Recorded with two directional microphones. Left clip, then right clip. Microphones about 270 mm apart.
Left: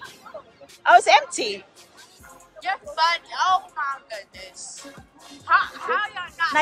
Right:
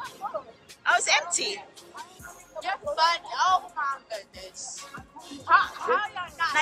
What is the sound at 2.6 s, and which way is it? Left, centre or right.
Speech, centre.